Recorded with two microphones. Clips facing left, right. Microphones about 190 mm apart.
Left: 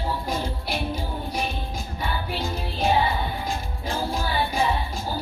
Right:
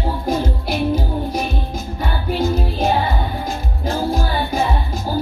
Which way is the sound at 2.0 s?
45° right (ahead or behind).